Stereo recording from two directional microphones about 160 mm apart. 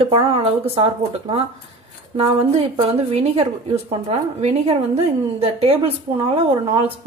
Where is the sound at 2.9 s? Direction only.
40° right (ahead or behind).